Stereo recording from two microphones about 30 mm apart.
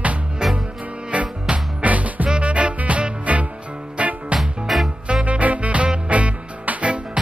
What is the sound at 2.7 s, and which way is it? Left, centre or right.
Swing music, right.